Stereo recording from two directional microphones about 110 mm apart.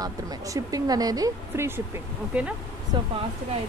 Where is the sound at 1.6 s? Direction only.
20° right (ahead or behind).